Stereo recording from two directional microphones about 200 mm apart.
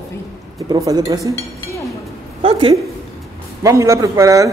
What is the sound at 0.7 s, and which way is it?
Speech, 20° right (ahead or behind).